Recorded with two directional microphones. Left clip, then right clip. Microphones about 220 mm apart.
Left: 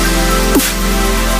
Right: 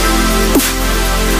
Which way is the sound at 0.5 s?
Centre (ahead or behind).